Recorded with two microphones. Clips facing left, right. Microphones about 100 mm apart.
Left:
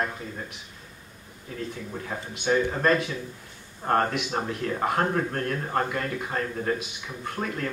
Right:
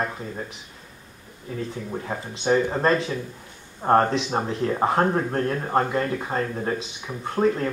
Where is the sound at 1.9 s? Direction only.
25° right (ahead or behind).